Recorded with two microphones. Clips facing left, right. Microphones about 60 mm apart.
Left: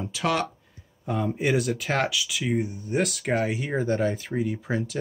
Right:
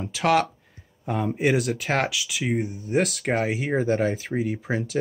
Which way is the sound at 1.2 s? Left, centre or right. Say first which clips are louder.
Right 2 dB; right.